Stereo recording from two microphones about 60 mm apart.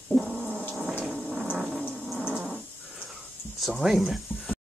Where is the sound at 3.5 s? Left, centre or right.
Centre.